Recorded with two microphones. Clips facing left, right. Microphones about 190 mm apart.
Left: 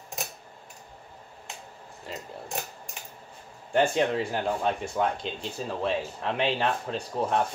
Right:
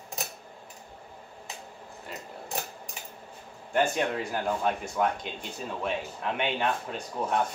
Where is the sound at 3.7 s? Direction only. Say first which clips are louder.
Left 3 dB; 30° left (ahead or behind).